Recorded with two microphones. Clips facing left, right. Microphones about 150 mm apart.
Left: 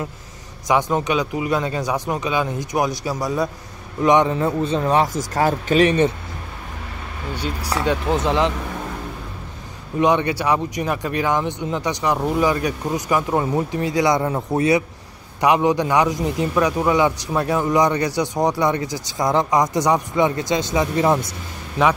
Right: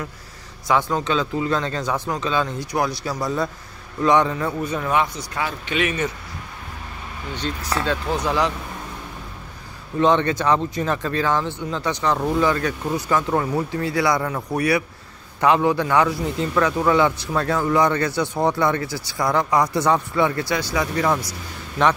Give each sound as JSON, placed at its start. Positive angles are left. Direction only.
{"t": 0.7, "sound": "a man's voice", "side_deg": 15}
{"t": 7.3, "sound": "a man's voice", "side_deg": 10}
{"t": 9.9, "sound": "a man's voice", "side_deg": 15}